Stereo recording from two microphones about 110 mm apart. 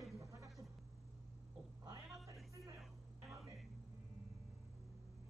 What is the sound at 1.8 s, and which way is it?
Cat, 30° right (ahead or behind).